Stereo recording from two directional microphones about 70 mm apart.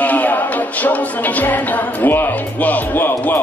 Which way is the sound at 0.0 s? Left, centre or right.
Left.